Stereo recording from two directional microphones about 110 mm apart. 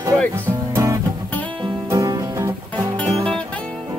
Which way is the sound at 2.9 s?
5° left (ahead or behind).